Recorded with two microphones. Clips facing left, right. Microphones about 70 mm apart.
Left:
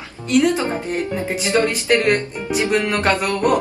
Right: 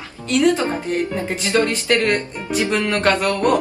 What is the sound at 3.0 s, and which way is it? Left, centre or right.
Speech, centre.